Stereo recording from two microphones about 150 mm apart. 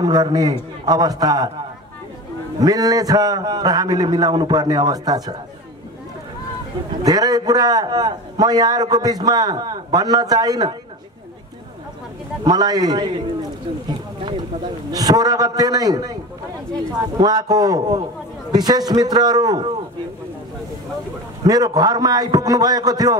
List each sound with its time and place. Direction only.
0.0 s a man's voice: 25° right (ahead or behind)
2.6 s a man's voice: 25° right (ahead or behind)
7.0 s a man's voice: 25° right (ahead or behind)
12.4 s a man's voice: 25° right (ahead or behind)
14.9 s a man's voice: 25° right (ahead or behind)
17.2 s a man's voice: 25° right (ahead or behind)
21.5 s a man's voice: 25° right (ahead or behind)